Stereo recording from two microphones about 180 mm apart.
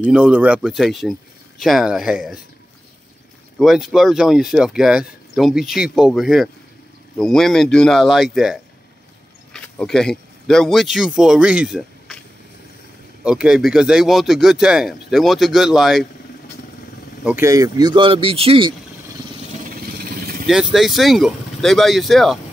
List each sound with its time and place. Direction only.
0.0 s speech: 5° right (ahead or behind)
3.5 s speech: centre (ahead or behind)
13.2 s speech: 5° right (ahead or behind)
17.2 s speech: 10° right (ahead or behind); by 18.8 s 30° right (ahead or behind)
20.4 s speech: centre (ahead or behind)